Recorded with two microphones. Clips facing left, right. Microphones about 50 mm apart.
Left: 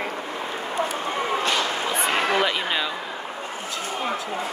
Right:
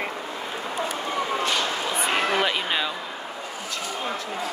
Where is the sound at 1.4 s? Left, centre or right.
Left.